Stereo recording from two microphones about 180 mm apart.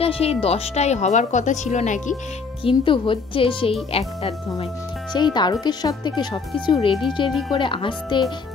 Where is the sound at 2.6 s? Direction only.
30° left (ahead or behind).